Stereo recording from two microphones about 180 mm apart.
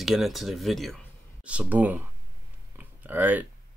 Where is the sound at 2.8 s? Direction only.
10° right (ahead or behind).